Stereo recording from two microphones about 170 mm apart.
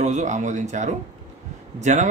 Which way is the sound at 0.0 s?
45° right (ahead or behind).